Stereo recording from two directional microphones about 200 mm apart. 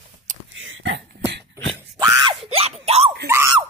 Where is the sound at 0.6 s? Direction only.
70° right (ahead or behind).